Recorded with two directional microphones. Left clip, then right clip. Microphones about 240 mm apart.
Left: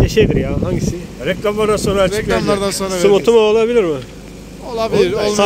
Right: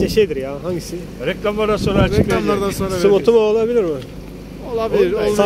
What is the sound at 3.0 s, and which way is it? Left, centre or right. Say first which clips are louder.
Speech: left 2 dB; centre.